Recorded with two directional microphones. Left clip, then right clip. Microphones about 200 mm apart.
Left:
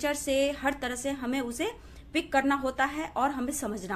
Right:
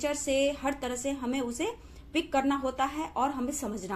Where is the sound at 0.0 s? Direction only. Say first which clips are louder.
Left 1 dB; 20° left (ahead or behind).